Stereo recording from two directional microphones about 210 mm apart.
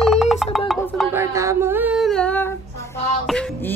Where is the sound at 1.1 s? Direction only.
15° right (ahead or behind); by 2.5 s 5° left (ahead or behind).